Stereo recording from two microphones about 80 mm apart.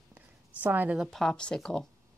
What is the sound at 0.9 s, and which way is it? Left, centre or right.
Speech, centre.